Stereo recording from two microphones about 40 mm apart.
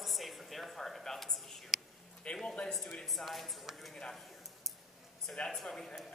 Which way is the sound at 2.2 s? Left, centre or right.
Left.